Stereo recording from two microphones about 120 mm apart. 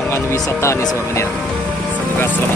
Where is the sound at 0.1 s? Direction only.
25° left (ahead or behind).